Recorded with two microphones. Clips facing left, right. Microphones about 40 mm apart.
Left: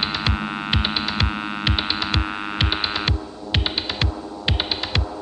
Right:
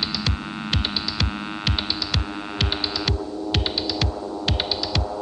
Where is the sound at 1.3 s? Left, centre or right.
Centre.